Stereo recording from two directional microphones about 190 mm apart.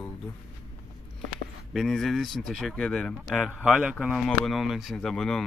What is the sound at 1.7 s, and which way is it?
Speech, centre (ahead or behind).